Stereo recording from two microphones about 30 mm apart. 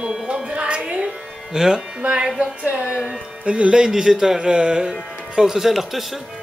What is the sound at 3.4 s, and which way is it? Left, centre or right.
Speech, right.